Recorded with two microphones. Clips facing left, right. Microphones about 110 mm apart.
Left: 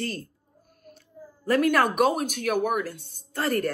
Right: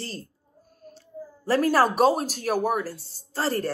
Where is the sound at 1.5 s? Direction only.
35° right (ahead or behind).